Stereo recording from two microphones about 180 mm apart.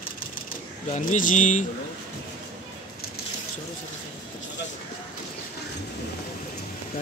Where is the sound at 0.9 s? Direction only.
45° left (ahead or behind).